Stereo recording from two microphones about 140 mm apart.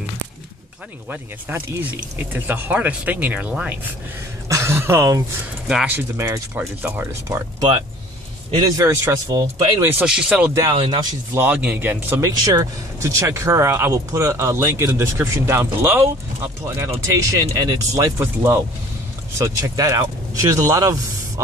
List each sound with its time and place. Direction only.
1.1 s speech: 10° right (ahead or behind)
4.5 s speech: 20° right (ahead or behind)
5.7 s speech: 5° right (ahead or behind)
5.9 s speech: 20° right (ahead or behind)
8.6 s speech: 25° right (ahead or behind)
10.0 s speech: 5° right (ahead or behind)
10.7 s speech: 35° right (ahead or behind)
11.3 s speech: 10° right (ahead or behind)